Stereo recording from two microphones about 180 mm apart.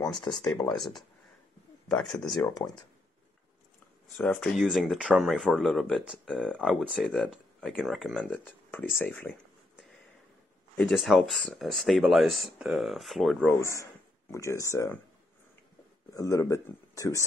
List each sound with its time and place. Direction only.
0.2 s speech: 25° left (ahead or behind)
0.7 s speech: centre (ahead or behind)
4.1 s speech: centre (ahead or behind)
10.8 s speech: centre (ahead or behind)
13.6 s speech: 15° left (ahead or behind)
16.1 s speech: 15° left (ahead or behind)